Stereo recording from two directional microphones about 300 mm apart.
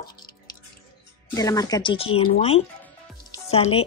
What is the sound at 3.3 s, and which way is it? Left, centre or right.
Music, centre.